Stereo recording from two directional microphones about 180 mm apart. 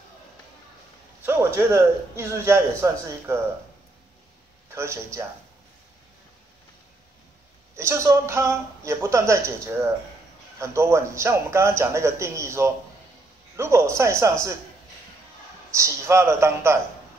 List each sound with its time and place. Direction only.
1.2 s a man's voice: 15° right (ahead or behind)
4.7 s a man's voice: 15° right (ahead or behind)
7.7 s a man's voice: 15° right (ahead or behind)
15.7 s a man's voice: 15° right (ahead or behind)